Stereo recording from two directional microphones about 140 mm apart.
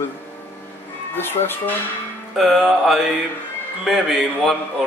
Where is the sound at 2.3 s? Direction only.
Centre (ahead or behind).